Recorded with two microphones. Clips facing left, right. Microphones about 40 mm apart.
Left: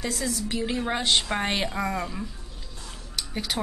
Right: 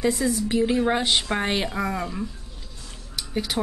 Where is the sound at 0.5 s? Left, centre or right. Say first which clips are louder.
Right 7 dB; centre.